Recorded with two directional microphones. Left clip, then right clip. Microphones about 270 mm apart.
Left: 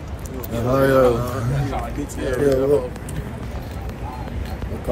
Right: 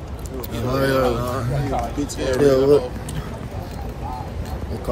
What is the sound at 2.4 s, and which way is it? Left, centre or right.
Speech, right.